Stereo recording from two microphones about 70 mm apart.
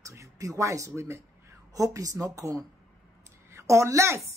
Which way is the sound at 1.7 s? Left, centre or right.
Right.